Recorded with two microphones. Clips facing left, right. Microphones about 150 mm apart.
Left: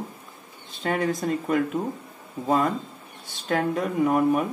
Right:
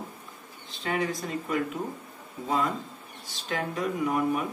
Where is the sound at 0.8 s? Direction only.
50° left (ahead or behind).